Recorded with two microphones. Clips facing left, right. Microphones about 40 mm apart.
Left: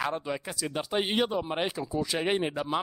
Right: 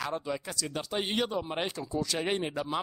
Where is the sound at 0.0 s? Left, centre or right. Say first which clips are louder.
Left 2 dB; centre.